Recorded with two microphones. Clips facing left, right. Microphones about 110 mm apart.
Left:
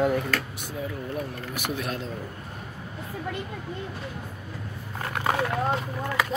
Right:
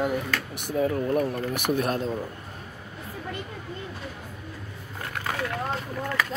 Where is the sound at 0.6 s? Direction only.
60° right (ahead or behind); by 2.0 s 45° right (ahead or behind).